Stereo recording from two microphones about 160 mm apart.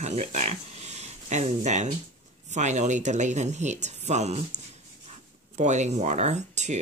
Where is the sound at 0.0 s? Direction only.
45° right (ahead or behind).